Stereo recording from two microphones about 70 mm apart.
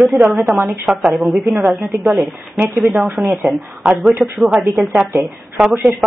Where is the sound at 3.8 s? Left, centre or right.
Centre.